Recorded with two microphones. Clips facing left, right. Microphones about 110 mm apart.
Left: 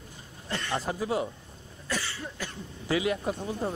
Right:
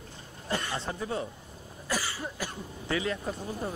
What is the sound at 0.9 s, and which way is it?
Speech, 20° left (ahead or behind).